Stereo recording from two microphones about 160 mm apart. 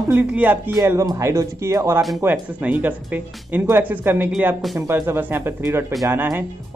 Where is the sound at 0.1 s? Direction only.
10° right (ahead or behind).